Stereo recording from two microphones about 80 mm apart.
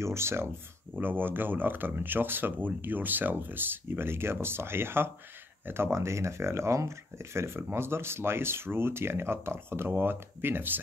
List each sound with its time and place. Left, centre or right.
0.0 s speech: right